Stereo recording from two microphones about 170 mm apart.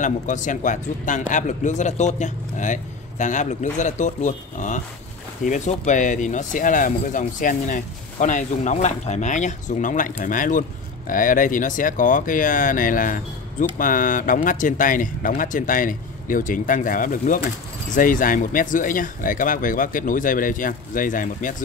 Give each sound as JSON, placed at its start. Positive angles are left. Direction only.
{"t": 0.0, "sound": "speech", "side_deg": 50}